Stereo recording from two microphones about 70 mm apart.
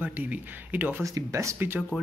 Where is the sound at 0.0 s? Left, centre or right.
Right.